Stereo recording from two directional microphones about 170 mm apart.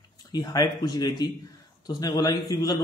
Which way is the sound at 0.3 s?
25° left (ahead or behind).